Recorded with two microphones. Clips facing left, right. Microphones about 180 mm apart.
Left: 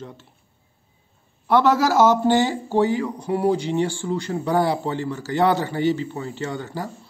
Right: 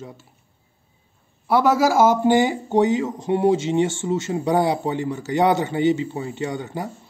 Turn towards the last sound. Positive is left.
turn(degrees=-15)  # may be behind; listen again after turning